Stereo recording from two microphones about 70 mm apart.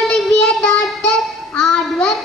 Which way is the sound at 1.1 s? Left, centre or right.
Centre.